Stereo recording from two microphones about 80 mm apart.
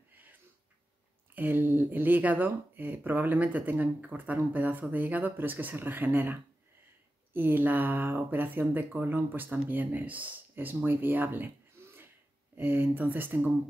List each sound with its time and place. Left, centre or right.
1.3 s speech: right